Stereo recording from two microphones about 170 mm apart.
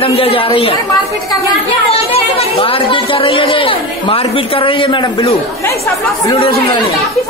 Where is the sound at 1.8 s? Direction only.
35° left (ahead or behind).